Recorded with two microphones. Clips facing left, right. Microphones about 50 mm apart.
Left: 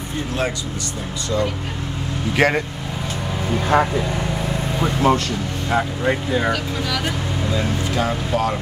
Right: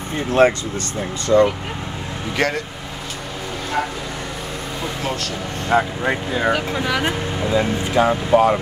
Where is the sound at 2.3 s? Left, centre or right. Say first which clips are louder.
Left 3 dB; centre.